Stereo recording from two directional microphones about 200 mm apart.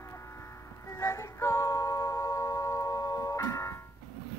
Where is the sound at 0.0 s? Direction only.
15° left (ahead or behind).